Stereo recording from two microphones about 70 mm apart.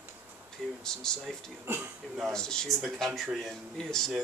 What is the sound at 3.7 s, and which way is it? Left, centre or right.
Speech, centre.